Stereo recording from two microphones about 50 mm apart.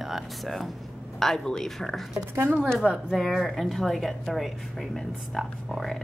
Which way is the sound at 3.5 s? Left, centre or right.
Centre.